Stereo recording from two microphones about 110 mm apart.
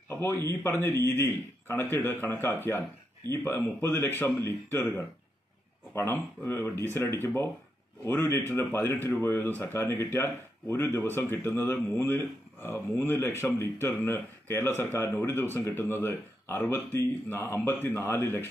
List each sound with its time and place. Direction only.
0.1 s a man's voice: 20° left (ahead or behind)